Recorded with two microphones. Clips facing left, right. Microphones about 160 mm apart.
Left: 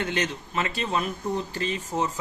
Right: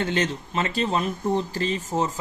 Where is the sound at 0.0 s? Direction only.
30° right (ahead or behind).